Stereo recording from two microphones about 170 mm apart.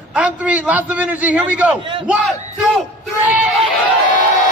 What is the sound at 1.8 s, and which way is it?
Speech, 30° right (ahead or behind).